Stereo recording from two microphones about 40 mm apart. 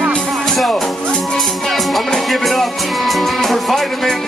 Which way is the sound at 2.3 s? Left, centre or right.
Centre.